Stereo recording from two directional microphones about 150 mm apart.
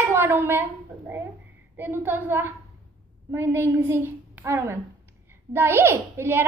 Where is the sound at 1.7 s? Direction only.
15° right (ahead or behind).